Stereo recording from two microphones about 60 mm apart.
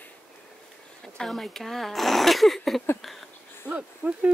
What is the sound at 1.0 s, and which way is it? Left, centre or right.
Speech, centre.